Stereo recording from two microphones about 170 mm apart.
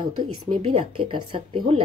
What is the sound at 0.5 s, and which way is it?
Speech, 30° right (ahead or behind).